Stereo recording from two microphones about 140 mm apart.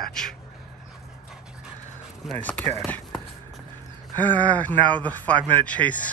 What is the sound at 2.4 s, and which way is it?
Speech, 10° left (ahead or behind).